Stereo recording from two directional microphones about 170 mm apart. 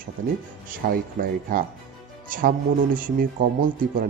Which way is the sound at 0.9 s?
55° right (ahead or behind).